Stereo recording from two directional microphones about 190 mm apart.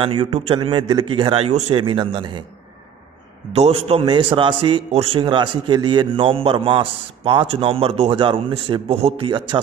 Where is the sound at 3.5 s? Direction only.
30° right (ahead or behind).